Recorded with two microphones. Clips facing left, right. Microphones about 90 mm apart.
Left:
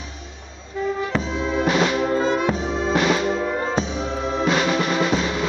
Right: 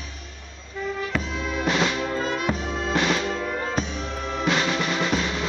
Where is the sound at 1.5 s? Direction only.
10° left (ahead or behind).